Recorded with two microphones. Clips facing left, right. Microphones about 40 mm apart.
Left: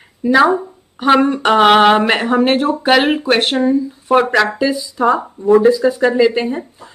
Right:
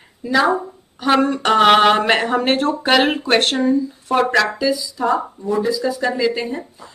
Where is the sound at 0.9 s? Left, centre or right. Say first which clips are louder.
Left 4 dB; left.